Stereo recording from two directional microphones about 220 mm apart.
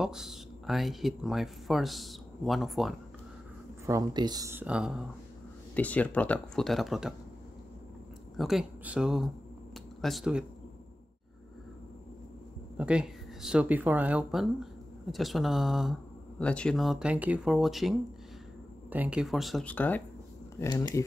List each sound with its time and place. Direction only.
0.0 s speech: centre (ahead or behind)
3.8 s speech: 15° right (ahead or behind)
5.8 s speech: 5° left (ahead or behind)
8.4 s speech: centre (ahead or behind)
12.7 s speech: 5° right (ahead or behind); by 21.0 s 15° left (ahead or behind)